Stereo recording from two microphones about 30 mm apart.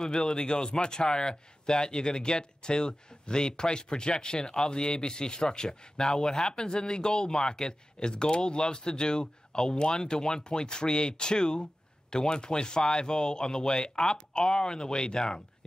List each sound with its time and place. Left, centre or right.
0.0 s speech: left